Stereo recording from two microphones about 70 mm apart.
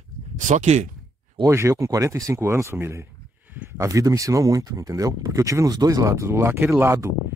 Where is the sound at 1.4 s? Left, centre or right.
Right.